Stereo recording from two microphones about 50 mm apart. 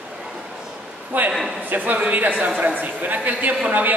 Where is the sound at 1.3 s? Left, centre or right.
Centre.